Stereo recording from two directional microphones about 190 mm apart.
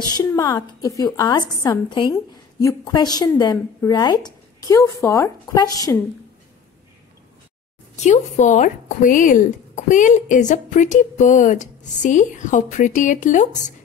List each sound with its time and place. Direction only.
0.1 s a woman's voice: 15° left (ahead or behind)
7.9 s speech: 35° left (ahead or behind)